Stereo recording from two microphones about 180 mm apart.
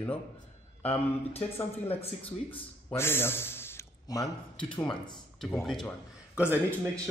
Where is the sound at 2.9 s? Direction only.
15° left (ahead or behind).